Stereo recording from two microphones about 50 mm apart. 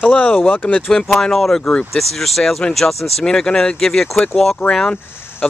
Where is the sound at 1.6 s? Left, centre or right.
Left.